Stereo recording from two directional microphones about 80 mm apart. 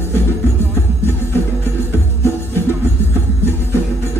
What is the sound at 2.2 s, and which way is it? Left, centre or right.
Music, left.